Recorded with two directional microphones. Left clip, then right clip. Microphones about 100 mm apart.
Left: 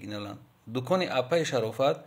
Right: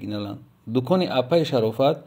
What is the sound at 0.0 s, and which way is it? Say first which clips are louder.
Speech: right 7 dB; 20° right (ahead or behind).